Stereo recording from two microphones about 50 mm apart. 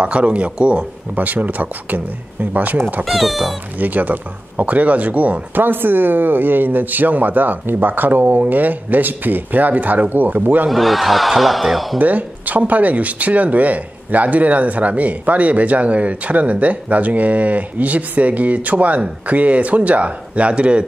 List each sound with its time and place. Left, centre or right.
0.0 s speech: right
3.8 s speech: right
10.7 s speech: centre
12.0 s speech: right